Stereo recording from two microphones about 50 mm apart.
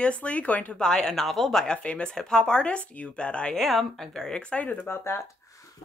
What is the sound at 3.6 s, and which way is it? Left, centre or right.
A woman's voice, centre.